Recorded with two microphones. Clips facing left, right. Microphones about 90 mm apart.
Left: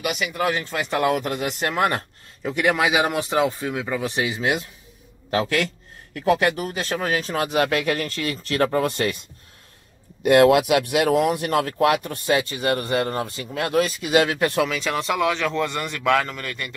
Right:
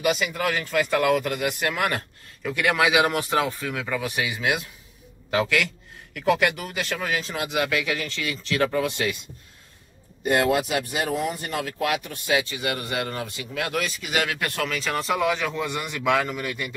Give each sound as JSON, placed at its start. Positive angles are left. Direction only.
{"t": 0.3, "sound": "speech", "side_deg": 20}
{"t": 5.3, "sound": "speech", "side_deg": 40}
{"t": 10.2, "sound": "speech", "side_deg": 65}
{"t": 14.6, "sound": "a man's voice", "side_deg": 5}